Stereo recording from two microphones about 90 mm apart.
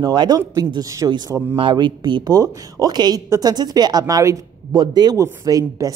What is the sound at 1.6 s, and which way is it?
Speech, 60° right (ahead or behind).